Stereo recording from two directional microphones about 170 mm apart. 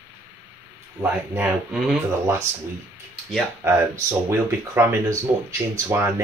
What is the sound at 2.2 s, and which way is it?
Speech, 15° right (ahead or behind).